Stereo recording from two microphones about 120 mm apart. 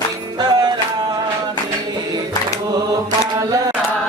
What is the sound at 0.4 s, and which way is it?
Music, 35° right (ahead or behind).